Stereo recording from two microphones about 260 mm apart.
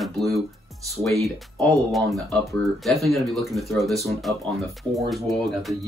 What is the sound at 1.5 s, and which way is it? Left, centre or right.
Speech, centre.